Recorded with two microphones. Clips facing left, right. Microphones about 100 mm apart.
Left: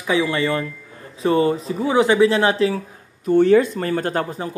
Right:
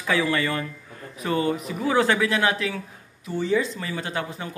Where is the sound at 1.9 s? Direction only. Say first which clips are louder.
Left 5 dB; 20° left (ahead or behind).